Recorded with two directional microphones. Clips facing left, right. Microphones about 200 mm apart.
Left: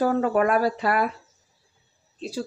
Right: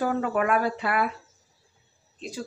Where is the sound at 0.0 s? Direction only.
40° left (ahead or behind).